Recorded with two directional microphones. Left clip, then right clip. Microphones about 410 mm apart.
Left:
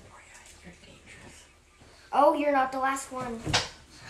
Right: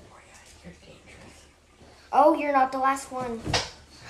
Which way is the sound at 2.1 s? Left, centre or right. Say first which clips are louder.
Right 2 dB; centre.